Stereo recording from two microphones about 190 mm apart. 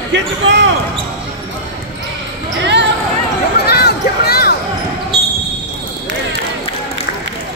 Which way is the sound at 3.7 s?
55° left (ahead or behind).